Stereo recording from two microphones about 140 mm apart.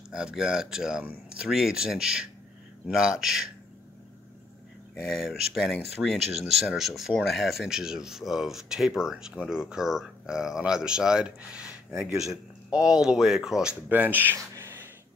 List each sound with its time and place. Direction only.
0.1 s speech: 5° right (ahead or behind)
5.0 s speech: centre (ahead or behind)
14.5 s a sound: 20° right (ahead or behind)